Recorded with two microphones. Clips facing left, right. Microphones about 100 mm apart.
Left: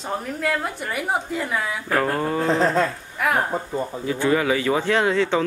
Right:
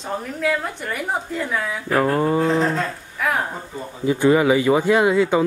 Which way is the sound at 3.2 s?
Centre (ahead or behind).